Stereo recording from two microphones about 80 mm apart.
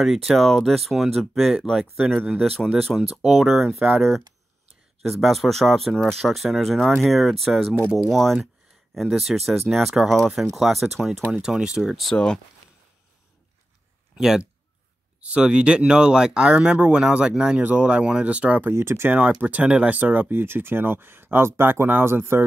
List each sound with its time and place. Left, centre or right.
0.0 s speech: centre
14.1 s speech: centre
18.7 s speech: right